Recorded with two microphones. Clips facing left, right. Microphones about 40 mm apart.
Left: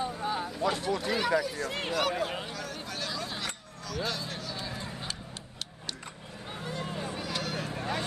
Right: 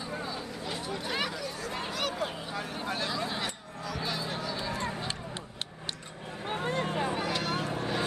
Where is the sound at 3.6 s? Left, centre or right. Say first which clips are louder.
Even; centre.